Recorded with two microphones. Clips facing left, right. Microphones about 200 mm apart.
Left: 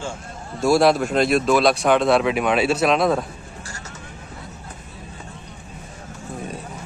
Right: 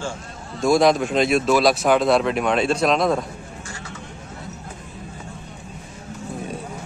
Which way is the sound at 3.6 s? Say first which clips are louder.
Right 2 dB; 40° left (ahead or behind).